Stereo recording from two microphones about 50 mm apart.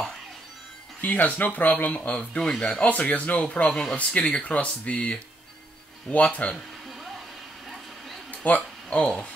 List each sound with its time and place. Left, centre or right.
1.0 s speech: left
2.0 s speech: left
8.5 s speech: left